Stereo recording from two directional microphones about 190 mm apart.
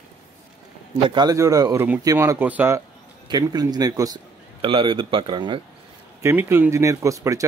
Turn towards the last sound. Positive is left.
turn(degrees=-15)  # may be behind; listen again after turning